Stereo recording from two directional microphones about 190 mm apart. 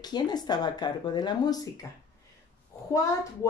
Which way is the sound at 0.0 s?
20° left (ahead or behind).